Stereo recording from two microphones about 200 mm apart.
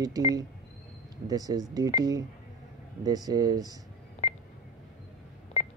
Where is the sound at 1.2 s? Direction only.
20° right (ahead or behind).